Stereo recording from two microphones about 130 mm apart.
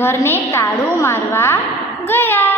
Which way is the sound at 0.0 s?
20° left (ahead or behind).